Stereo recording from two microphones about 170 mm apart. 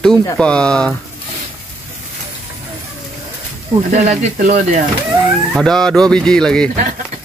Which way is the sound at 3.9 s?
40° right (ahead or behind).